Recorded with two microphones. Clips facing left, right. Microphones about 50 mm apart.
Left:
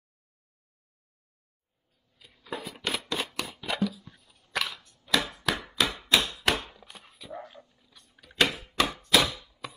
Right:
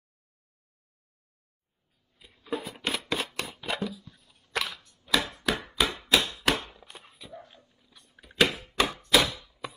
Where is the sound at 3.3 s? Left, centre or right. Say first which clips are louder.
Even; centre.